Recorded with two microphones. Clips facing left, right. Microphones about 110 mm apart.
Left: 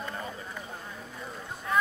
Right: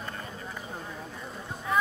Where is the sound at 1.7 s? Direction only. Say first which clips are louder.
Even; centre (ahead or behind).